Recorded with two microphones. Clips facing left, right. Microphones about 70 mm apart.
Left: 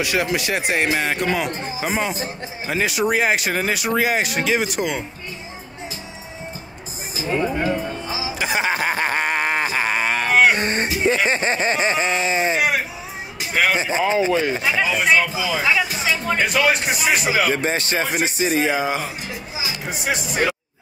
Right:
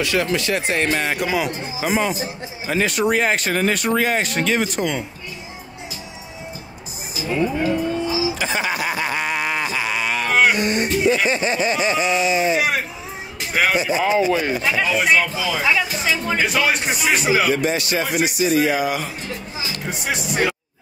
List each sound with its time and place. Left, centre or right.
0.0 s speech: centre
0.9 s speech: centre
2.1 s a man's voice: left
2.7 s speech: centre
7.2 s a sound: left
8.4 s a sound: centre
8.6 s a sound: left
11.2 s speech: left
12.5 s a sound: centre
13.4 s music: centre
13.7 s speech: left
14.6 s speech: centre
17.6 s speech: left; by 19.8 s centre
19.9 s speech: centre